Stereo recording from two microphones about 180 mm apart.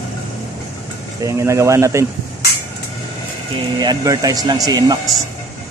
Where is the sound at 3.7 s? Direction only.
20° right (ahead or behind).